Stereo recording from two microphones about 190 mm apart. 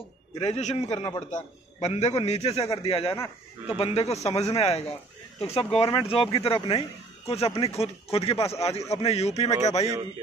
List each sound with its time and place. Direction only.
0.4 s a man's voice: 35° left (ahead or behind)